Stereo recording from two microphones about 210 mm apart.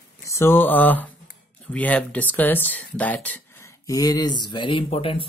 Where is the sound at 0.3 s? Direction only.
10° left (ahead or behind).